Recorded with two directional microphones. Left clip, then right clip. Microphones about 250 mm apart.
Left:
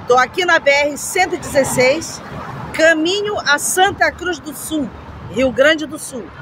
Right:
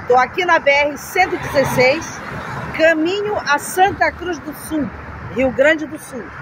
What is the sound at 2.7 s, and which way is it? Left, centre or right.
Speech, centre.